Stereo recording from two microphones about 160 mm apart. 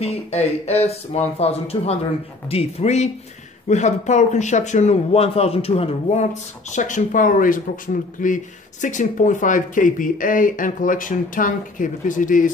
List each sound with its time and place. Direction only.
0.0 s speech: 40° left (ahead or behind)
6.7 s speech: 50° left (ahead or behind)